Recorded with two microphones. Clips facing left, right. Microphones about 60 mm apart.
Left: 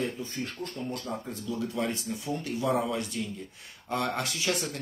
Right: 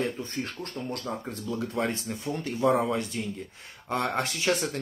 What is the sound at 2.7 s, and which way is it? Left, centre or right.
Speech, right.